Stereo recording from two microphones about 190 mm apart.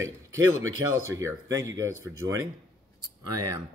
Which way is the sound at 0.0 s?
90° right.